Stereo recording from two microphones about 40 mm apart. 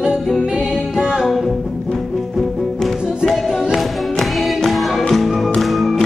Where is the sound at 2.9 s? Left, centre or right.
Centre.